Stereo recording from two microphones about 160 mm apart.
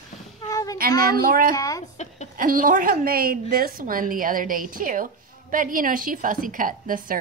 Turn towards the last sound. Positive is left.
turn(degrees=-60)  # may be behind; listen again after turning